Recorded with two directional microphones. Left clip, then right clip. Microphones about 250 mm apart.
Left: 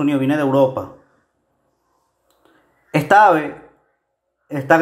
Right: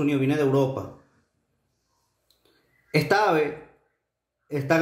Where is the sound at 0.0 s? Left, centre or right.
Centre.